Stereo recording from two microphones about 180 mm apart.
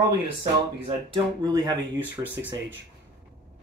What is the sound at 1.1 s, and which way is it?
Speech, 20° right (ahead or behind).